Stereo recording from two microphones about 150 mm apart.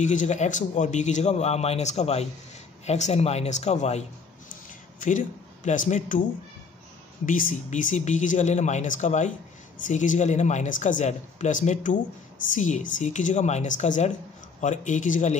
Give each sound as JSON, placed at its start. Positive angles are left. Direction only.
{"t": 0.0, "sound": "a man's voice", "side_deg": 55}
{"t": 5.0, "sound": "speech", "side_deg": 55}
{"t": 7.2, "sound": "a man's voice", "side_deg": 60}